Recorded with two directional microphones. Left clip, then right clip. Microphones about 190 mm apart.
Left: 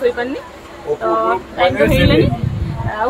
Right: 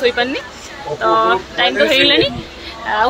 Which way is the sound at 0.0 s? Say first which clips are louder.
Right 2 dB; centre (ahead or behind).